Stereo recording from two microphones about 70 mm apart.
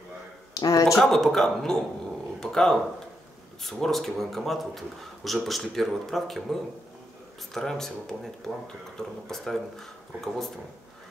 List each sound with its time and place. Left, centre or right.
0.6 s speech: left
0.9 s speech: centre